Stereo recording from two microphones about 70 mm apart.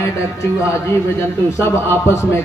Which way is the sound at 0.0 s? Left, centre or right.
Left.